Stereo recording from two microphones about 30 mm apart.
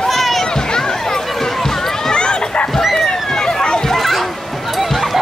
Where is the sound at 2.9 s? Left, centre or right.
Centre.